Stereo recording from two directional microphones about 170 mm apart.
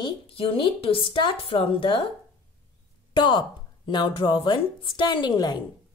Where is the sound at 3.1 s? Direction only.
25° left (ahead or behind).